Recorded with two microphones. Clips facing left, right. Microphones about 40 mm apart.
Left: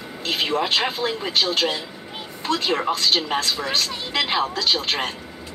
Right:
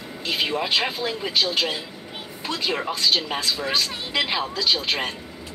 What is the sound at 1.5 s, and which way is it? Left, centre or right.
Speech, centre.